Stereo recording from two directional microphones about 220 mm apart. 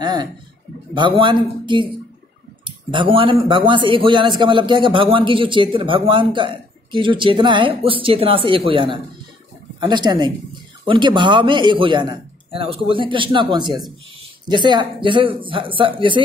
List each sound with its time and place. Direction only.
0.0 s speech: 20° right (ahead or behind)